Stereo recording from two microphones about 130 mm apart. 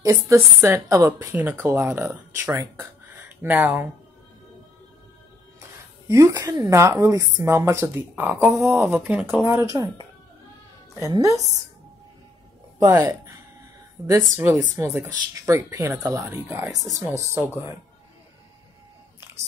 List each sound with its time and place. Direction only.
0.0 s speech: 25° right (ahead or behind)
6.0 s speech: 25° right (ahead or behind)
11.1 s speech: 25° right (ahead or behind)
12.7 s speech: 25° right (ahead or behind)
14.3 s speech: 20° right (ahead or behind)